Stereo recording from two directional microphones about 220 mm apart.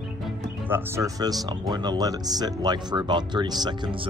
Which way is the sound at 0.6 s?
10° right (ahead or behind).